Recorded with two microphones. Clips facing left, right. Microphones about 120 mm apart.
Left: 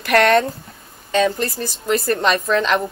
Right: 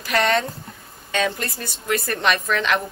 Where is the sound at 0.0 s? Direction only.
60° left (ahead or behind).